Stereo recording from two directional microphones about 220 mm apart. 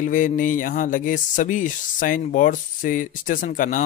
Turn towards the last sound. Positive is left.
turn(degrees=35)  # may be behind; listen again after turning